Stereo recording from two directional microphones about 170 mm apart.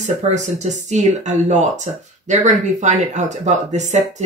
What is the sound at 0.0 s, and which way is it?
Speech, 45° right (ahead or behind).